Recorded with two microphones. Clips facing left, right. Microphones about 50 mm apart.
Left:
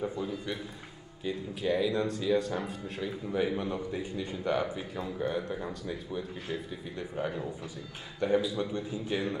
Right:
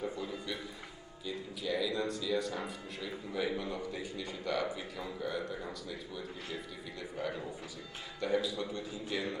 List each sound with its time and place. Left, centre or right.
0.0 s speech: left
3.3 s a man's voice: left